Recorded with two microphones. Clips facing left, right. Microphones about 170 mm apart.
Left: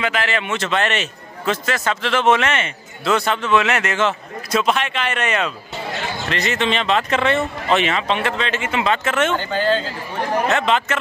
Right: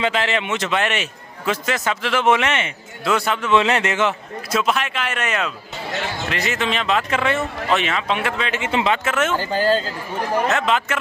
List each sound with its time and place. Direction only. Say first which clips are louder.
0.0 s a man's voice: right 1 dB; 25° right (ahead or behind); by 3.5 s 5° right (ahead or behind)
3.5 s a man's voice: right 1 dB; 25° right (ahead or behind)
4.5 s a man's voice: left 2 dB; 5° right (ahead or behind)
8.6 s a man's voice: right 1 dB; 25° right (ahead or behind)
8.9 s speech: left 1 dB; 5° right (ahead or behind)
10.5 s speech: left 1 dB; 5° right (ahead or behind)